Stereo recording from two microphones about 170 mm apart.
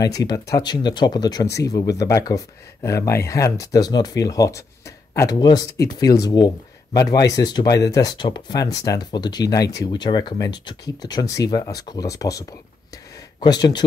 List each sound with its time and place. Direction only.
0.0 s speech: 20° left (ahead or behind)